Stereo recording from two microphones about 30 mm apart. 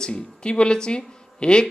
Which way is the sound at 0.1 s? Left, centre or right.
Left.